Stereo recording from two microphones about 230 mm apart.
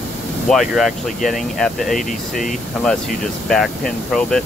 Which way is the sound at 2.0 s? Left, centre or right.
Left.